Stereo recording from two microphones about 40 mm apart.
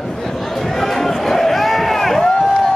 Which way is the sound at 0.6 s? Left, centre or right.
Centre.